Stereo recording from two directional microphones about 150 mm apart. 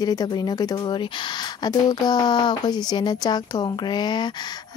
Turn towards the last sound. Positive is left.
turn(degrees=30)  # may be behind; listen again after turning